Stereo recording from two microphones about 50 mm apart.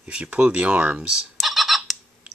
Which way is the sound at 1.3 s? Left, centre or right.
Centre.